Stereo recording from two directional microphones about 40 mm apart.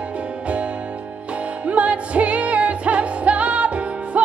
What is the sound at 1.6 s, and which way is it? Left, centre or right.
Music, right.